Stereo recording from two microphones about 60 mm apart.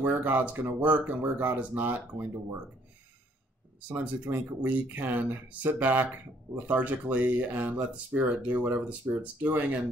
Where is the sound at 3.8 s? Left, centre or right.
Right.